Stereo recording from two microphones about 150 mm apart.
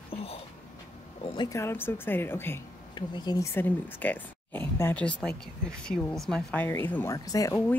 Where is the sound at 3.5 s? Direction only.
10° left (ahead or behind).